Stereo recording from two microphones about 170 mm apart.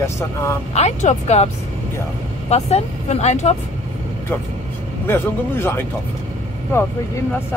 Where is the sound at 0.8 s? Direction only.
40° left (ahead or behind).